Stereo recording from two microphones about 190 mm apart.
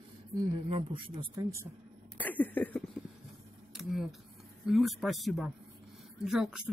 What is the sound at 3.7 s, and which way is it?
Speech, centre (ahead or behind).